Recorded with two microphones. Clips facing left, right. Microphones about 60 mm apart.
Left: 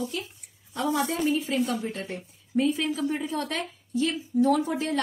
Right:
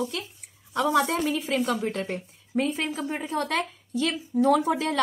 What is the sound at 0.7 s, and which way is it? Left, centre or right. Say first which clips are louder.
A woman's voice: right 4 dB; right.